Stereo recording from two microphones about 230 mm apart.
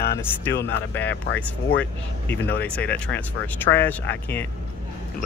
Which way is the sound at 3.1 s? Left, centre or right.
Centre.